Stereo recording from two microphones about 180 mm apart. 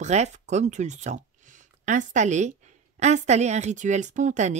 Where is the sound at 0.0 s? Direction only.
40° right (ahead or behind).